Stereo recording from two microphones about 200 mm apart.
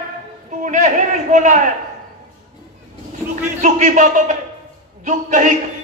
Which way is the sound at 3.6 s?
40° right (ahead or behind).